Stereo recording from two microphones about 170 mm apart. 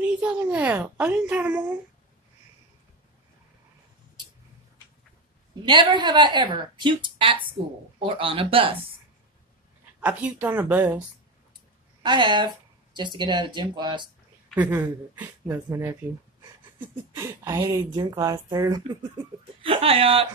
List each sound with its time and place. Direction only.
0.0 s a woman's voice: 5° right (ahead or behind)
5.7 s a woman's voice: 30° right (ahead or behind)
9.9 s a woman's voice: 10° right (ahead or behind)
12.0 s speech: 25° right (ahead or behind)
14.5 s a woman's voice: 10° right (ahead or behind)
19.6 s a man's voice: 35° right (ahead or behind)